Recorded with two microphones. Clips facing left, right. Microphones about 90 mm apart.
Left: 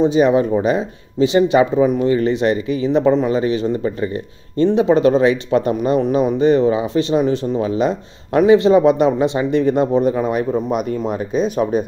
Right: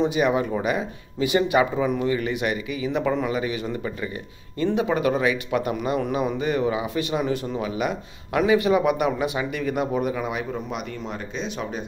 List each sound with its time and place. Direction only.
0.0 s speech: 25° left (ahead or behind)
2.0 s speech: 35° left (ahead or behind)